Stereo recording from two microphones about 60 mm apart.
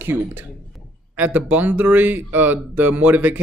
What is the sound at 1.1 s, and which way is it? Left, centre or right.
Speech, right.